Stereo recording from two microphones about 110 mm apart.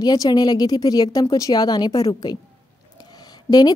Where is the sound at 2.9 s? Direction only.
40° left (ahead or behind).